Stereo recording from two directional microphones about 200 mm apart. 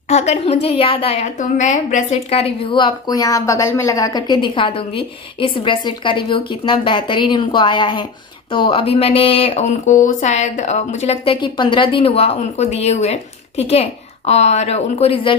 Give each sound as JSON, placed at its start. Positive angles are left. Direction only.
{"t": 0.1, "sound": "a woman's voice", "side_deg": 35}